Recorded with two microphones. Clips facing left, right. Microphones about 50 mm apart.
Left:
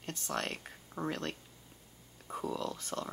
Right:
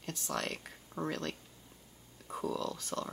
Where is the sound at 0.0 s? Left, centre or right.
Left.